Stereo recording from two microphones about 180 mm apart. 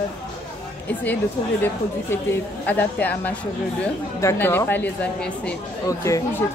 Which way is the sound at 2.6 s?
10° left (ahead or behind).